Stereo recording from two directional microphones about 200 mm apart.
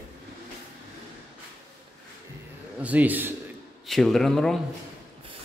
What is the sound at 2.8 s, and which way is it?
Speech, 10° right (ahead or behind).